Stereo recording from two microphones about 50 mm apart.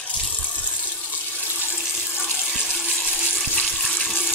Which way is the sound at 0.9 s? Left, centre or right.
Left.